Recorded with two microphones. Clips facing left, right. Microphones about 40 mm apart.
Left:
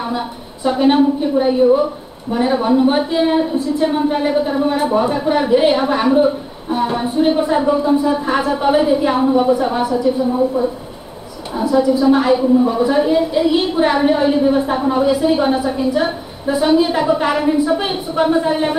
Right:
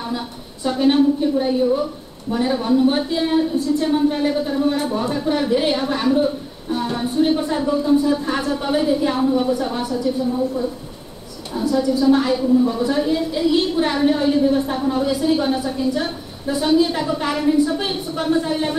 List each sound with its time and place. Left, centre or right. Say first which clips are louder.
0.7 s a woman's voice: left 3 dB; centre